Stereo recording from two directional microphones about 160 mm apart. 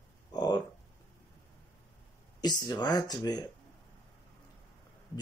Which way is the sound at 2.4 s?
25° left (ahead or behind).